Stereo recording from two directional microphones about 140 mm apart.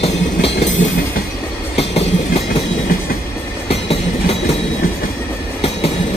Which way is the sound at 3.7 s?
45° left (ahead or behind).